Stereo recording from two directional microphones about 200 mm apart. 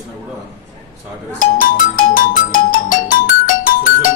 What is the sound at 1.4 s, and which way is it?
Music, 45° left (ahead or behind).